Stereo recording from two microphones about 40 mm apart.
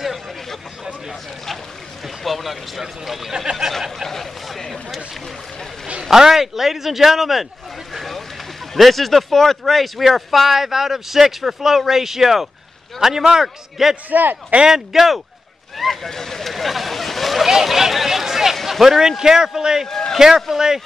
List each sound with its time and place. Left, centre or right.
2.2 s speech: centre
4.0 s a sound: centre
6.0 s speech: centre
7.9 s vehicle: centre
8.7 s speech: centre
14.1 s a man's voice: right
14.7 s speech: centre